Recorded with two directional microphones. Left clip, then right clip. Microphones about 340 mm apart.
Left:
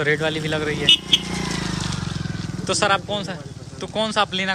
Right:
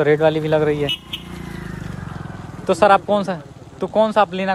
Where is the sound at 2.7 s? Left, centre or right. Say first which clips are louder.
Right 7 dB; centre.